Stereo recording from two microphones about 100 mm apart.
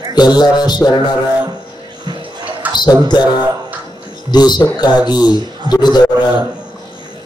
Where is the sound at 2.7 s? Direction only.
45° left (ahead or behind).